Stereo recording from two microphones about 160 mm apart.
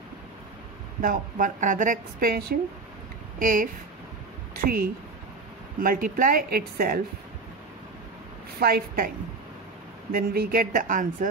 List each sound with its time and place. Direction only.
1.0 s a woman's voice: 55° right (ahead or behind)
8.5 s a woman's voice: 70° right (ahead or behind)
10.1 s a woman's voice: 70° right (ahead or behind)